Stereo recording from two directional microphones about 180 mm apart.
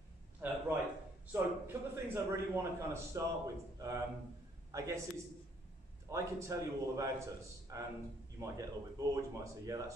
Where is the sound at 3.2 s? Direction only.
15° right (ahead or behind).